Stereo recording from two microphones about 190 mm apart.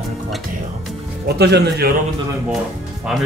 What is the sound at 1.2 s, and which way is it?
Speech, 60° right (ahead or behind).